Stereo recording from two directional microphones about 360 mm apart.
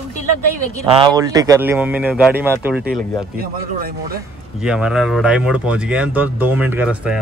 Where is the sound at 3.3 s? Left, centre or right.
Right.